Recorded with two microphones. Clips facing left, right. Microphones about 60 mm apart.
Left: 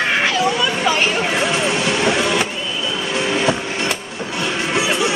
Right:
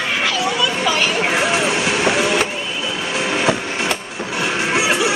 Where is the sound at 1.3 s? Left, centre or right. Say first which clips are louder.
Right 1 dB; centre.